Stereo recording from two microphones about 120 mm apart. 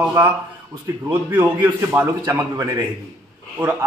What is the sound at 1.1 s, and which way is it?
A man's voice, 15° right (ahead or behind).